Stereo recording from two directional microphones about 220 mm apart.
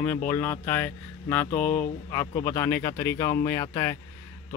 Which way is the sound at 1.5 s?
35° left (ahead or behind).